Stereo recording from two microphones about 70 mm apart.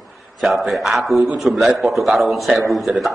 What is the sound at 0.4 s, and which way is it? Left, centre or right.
Speech, centre.